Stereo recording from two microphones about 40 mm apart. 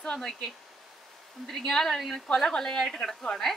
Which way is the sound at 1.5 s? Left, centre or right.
Centre.